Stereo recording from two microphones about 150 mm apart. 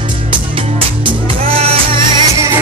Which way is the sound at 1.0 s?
40° right (ahead or behind).